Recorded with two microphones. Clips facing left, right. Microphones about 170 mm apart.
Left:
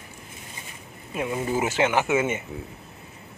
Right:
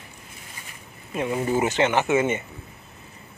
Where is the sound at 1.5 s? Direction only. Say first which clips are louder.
Right 1 dB; 5° left (ahead or behind).